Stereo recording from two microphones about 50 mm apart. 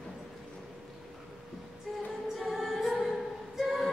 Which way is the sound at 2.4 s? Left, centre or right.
Centre.